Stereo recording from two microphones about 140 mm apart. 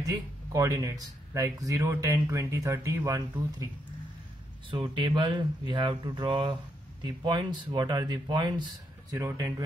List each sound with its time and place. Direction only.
0.0 s speech: 25° right (ahead or behind)
4.6 s speech: 35° right (ahead or behind)
9.1 s speech: 20° right (ahead or behind)